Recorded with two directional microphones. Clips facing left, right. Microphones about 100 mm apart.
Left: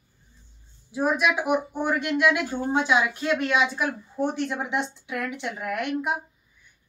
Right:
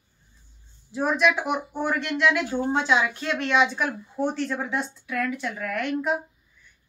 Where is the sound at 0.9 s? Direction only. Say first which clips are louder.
Right 1 dB; 10° left (ahead or behind).